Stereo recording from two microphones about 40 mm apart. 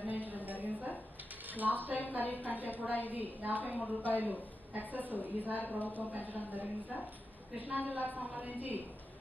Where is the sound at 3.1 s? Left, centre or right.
Right.